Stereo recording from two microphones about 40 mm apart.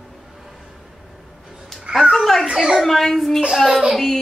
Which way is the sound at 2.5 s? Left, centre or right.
Right.